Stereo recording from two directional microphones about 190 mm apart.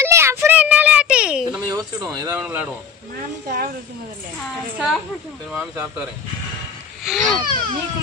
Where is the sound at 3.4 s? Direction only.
50° right (ahead or behind).